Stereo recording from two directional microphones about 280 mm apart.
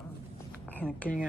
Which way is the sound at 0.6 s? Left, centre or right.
Centre.